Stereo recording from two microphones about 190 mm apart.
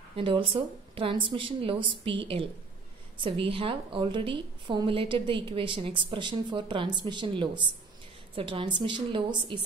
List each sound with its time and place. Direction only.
0.1 s a woman's voice: 25° right (ahead or behind)